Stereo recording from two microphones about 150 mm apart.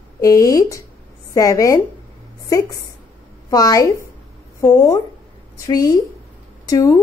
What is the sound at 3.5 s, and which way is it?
Speech, 25° left (ahead or behind).